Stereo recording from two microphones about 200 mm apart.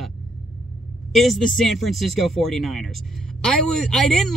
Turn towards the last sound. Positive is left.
turn(degrees=5)  # may be behind; listen again after turning